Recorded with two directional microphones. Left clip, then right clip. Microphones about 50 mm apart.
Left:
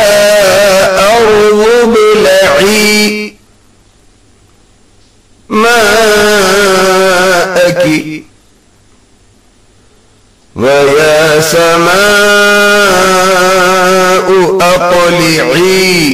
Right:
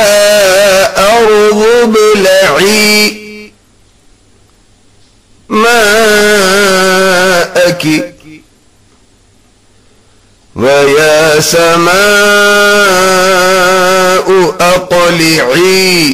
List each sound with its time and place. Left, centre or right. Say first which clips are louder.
0.2 s music: even; right
5.7 s music: even; right
10.5 s mantra: even; right
12.8 s a sound: even; right